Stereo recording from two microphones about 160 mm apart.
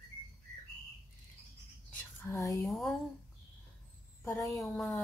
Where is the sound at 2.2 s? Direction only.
20° left (ahead or behind).